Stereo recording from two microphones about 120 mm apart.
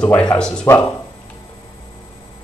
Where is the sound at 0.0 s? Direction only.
10° left (ahead or behind).